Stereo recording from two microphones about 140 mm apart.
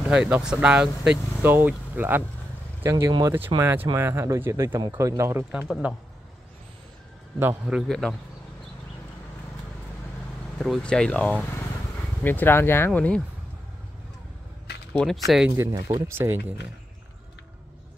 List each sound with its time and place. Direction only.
0.1 s speech: 5° right (ahead or behind); by 3.3 s 30° right (ahead or behind)
3.3 s speech: 15° right (ahead or behind)
5.7 s speech: 10° right (ahead or behind)
7.3 s speech: 10° right (ahead or behind)
7.9 s speech: 5° left (ahead or behind)
10.6 s speech: 5° left (ahead or behind)
14.9 s speech: 5° left (ahead or behind)
15.5 s speech: 25° right (ahead or behind)